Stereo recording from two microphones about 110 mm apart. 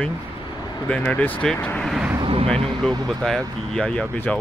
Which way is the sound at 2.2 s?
55° right (ahead or behind).